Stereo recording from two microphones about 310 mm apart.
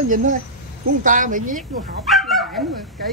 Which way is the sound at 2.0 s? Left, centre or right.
Centre.